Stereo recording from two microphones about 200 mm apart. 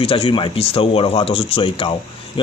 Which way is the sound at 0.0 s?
30° left (ahead or behind).